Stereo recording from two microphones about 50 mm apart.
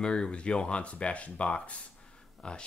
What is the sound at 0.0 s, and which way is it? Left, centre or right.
Speech, centre.